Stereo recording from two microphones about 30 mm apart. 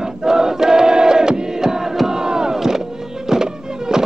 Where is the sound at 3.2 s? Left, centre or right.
Centre.